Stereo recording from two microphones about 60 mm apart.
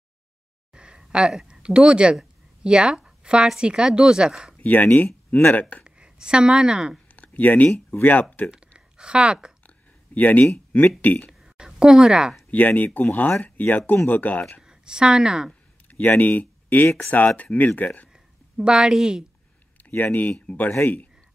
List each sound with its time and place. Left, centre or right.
0.7 s speech: centre
4.6 s speech: left
5.9 s a woman's voice: centre
7.2 s speech: left
8.5 s a sound: centre
10.1 s speech: left
11.4 s a sound: centre
12.4 s speech: left
14.7 s a woman's voice: centre
15.9 s speech: left
18.6 s speech: centre
19.8 s speech: left